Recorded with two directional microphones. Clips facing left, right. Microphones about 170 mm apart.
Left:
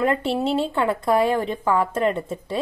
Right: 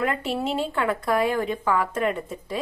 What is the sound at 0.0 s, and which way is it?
A woman's voice, 30° left (ahead or behind).